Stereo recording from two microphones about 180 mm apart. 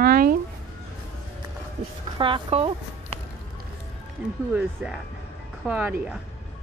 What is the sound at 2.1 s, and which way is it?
Speech, 25° right (ahead or behind).